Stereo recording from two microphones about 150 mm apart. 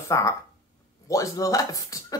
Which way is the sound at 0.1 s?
20° left (ahead or behind).